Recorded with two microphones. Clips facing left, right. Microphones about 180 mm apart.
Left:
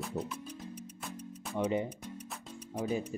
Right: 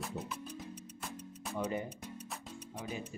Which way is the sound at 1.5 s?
20° left (ahead or behind).